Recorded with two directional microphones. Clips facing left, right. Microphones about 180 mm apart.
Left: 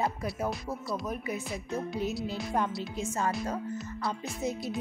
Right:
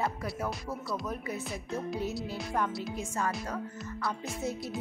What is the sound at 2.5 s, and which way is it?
Speech, 25° left (ahead or behind).